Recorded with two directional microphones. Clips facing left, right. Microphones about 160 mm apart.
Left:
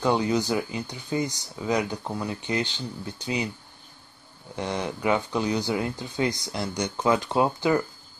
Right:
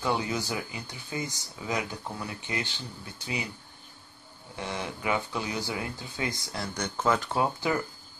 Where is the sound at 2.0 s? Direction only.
30° left (ahead or behind).